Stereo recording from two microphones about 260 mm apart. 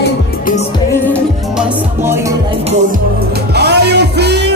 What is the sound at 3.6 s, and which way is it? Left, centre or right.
Music, right.